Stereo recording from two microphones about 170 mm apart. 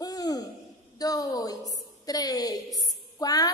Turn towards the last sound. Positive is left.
turn(degrees=20)  # may be behind; listen again after turning